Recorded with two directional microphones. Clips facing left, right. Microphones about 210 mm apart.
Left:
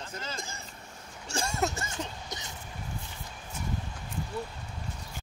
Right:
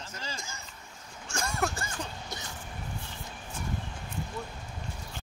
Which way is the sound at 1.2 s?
30° left (ahead or behind).